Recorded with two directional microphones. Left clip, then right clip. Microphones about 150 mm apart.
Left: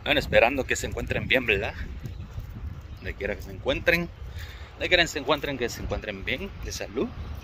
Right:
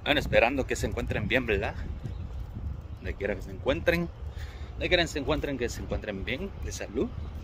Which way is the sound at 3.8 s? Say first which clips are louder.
Left 5 dB; 15° right (ahead or behind).